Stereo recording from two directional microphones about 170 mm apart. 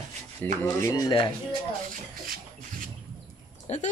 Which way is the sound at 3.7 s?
40° left (ahead or behind).